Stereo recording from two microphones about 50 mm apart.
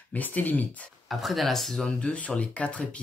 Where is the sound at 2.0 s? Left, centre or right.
Left.